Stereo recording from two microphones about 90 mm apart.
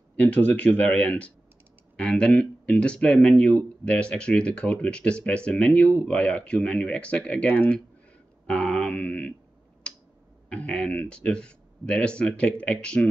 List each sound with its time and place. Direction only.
0.1 s speech: 15° left (ahead or behind)
10.5 s speech: 10° left (ahead or behind)